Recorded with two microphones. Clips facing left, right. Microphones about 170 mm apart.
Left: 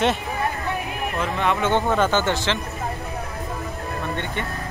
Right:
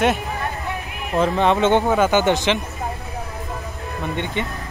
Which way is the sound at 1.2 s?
35° right (ahead or behind).